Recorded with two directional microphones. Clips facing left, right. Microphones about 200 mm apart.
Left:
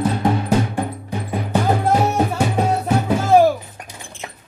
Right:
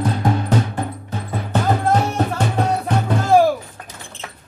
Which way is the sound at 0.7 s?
15° left (ahead or behind).